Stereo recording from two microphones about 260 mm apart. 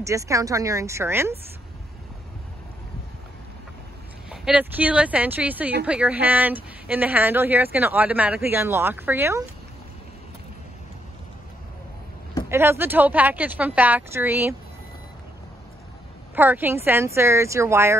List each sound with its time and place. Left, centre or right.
0.0 s speech: centre
4.3 s speech: centre
12.4 s speech: centre
16.3 s speech: centre